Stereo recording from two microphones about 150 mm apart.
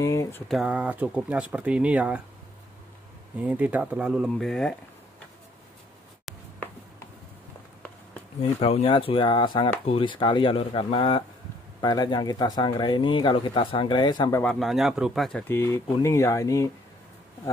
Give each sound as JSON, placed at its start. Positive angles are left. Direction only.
{"t": 0.0, "sound": "a sound", "side_deg": 20}
{"t": 0.5, "sound": "speech", "side_deg": -5}
{"t": 3.3, "sound": "speech", "side_deg": -10}
{"t": 8.4, "sound": "speech", "side_deg": 40}
{"t": 14.4, "sound": "speech", "side_deg": 5}
{"t": 15.4, "sound": "speech", "side_deg": 15}